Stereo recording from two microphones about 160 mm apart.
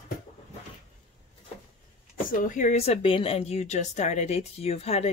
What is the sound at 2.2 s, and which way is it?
Speech, 60° left (ahead or behind).